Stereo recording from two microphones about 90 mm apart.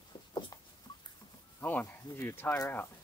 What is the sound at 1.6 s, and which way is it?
Snake, 20° left (ahead or behind).